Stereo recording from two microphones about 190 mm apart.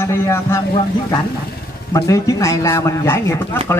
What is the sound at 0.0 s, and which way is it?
Speech, 15° left (ahead or behind).